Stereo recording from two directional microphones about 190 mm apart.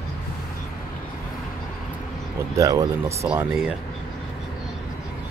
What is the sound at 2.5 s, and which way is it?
Speech, 20° right (ahead or behind).